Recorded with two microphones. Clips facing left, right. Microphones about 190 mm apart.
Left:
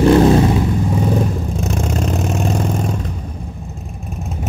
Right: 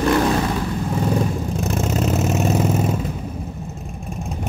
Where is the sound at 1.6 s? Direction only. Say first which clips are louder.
Even; centre (ahead or behind).